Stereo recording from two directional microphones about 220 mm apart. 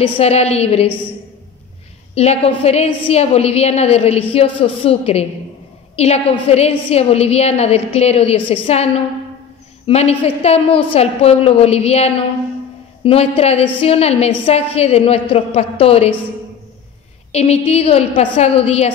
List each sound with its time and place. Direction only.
0.0 s a woman's voice: 30° left (ahead or behind)
2.1 s a woman's voice: 30° left (ahead or behind)
17.3 s a woman's voice: 30° left (ahead or behind)